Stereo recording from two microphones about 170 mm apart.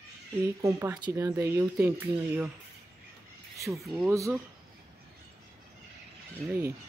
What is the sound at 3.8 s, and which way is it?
Speech, centre (ahead or behind).